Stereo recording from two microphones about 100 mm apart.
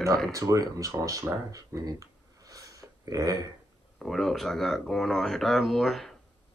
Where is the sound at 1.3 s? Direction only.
30° right (ahead or behind).